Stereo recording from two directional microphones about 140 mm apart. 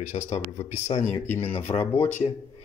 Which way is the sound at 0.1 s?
35° left (ahead or behind).